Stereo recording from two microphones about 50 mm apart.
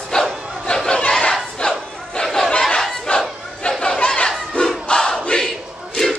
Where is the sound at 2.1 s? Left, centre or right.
Centre.